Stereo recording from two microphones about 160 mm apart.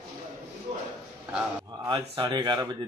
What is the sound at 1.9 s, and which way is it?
Speech, 25° right (ahead or behind).